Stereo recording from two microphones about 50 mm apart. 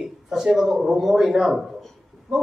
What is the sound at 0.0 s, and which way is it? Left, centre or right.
A man's voice, centre.